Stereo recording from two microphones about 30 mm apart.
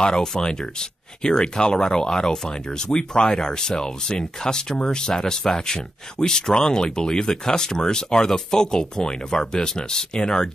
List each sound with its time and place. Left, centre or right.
0.0 s speech: left
5.1 s speech: centre